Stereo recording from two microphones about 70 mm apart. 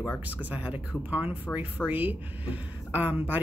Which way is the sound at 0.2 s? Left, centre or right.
Right.